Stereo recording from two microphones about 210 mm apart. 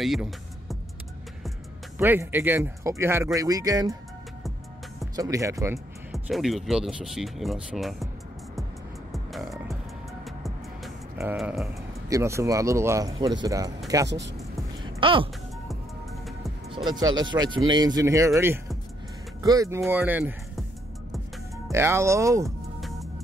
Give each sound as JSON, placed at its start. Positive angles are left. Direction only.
{"t": 0.0, "sound": "speech", "side_deg": 0}
{"t": 2.0, "sound": "speech", "side_deg": -10}
{"t": 5.1, "sound": "speech", "side_deg": -15}
{"t": 6.1, "sound": "speech", "side_deg": 0}
{"t": 9.1, "sound": "music", "side_deg": 0}
{"t": 11.3, "sound": "speech", "side_deg": -5}
{"t": 14.0, "sound": "speech", "side_deg": -55}
{"t": 15.0, "sound": "speech", "side_deg": -25}
{"t": 17.0, "sound": "speech", "side_deg": -20}
{"t": 21.6, "sound": "speech", "side_deg": -10}
{"t": 22.8, "sound": "music", "side_deg": 0}